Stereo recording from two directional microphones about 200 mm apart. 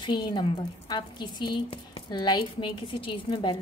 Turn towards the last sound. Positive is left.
turn(degrees=25)  # may be behind; listen again after turning